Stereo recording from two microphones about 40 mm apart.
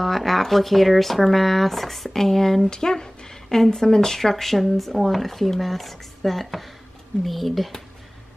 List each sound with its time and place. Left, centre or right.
0.0 s speech: centre
2.7 s speech: centre